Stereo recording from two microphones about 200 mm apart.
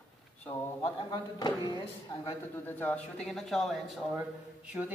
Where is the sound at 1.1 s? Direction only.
20° left (ahead or behind).